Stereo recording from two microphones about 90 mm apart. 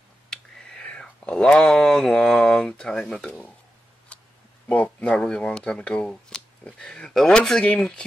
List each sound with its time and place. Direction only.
0.3 s speech: 10° left (ahead or behind)
4.6 s speech: 15° left (ahead or behind)